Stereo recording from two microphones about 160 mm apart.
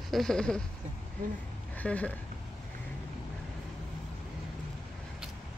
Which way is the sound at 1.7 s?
10° left (ahead or behind).